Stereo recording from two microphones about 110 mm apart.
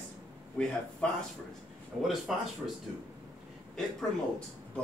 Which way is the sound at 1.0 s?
10° left (ahead or behind).